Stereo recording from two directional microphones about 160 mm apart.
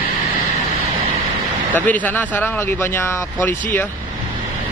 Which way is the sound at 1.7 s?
10° left (ahead or behind).